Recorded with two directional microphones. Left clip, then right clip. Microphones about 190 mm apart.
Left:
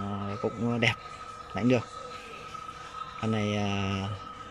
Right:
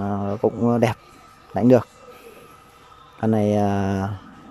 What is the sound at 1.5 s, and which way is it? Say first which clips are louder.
Speech: right 11 dB; 25° right (ahead or behind).